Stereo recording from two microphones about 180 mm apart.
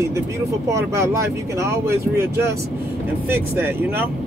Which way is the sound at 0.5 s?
15° right (ahead or behind).